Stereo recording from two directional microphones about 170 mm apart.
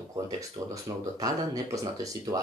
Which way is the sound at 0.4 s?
20° right (ahead or behind).